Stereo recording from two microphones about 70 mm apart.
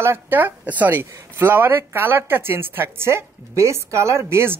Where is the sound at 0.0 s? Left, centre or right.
Right.